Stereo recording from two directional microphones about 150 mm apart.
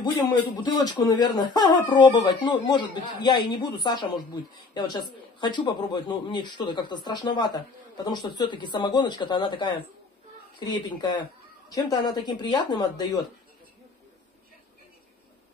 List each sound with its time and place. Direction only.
0.0 s speech: 25° left (ahead or behind)
10.9 s speech: 30° left (ahead or behind)